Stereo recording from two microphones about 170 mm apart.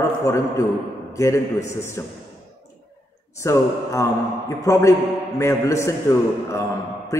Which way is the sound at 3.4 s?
15° left (ahead or behind).